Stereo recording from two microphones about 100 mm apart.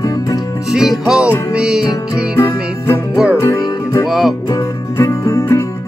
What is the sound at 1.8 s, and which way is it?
Music, 30° left (ahead or behind).